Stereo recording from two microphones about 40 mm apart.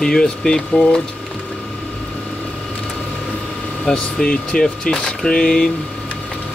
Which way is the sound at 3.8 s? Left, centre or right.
Centre.